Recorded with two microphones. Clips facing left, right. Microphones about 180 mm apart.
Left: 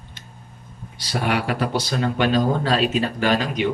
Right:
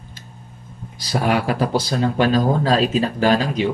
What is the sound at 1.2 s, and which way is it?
A man's voice, 40° right (ahead or behind).